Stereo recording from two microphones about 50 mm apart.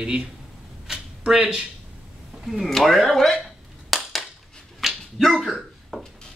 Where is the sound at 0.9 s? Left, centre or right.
Centre.